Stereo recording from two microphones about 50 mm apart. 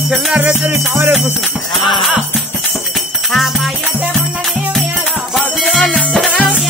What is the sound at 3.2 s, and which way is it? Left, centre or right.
Music, centre.